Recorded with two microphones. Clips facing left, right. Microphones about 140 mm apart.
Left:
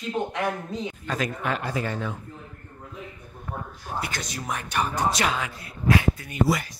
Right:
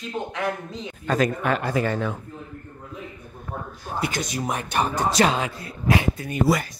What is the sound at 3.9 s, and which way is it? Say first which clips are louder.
Speech: right 5 dB; 20° right (ahead or behind).